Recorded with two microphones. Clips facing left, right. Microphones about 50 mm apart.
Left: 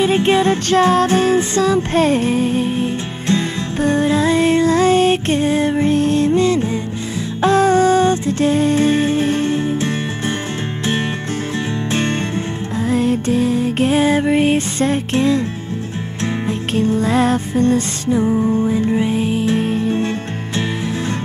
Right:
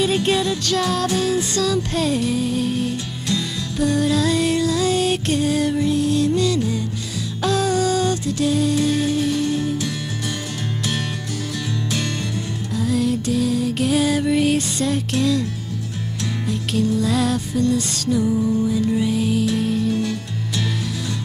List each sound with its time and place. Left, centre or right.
0.0 s music: left
12.8 s music: left
16.4 s music: left